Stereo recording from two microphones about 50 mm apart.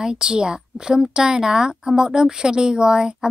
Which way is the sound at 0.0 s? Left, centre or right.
Centre.